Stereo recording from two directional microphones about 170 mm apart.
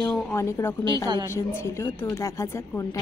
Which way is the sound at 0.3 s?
15° left (ahead or behind).